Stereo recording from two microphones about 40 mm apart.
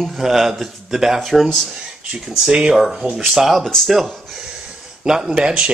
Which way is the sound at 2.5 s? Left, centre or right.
Centre.